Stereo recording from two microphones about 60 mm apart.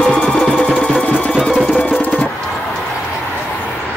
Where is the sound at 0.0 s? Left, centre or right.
Centre.